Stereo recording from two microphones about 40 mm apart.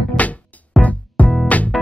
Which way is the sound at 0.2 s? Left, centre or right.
Left.